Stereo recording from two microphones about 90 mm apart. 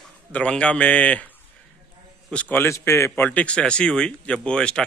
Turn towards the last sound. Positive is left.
turn(degrees=10)  # may be behind; listen again after turning